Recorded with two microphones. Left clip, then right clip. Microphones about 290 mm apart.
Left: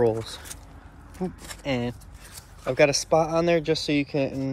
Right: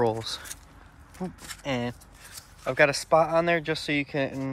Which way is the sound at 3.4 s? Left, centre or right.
Right.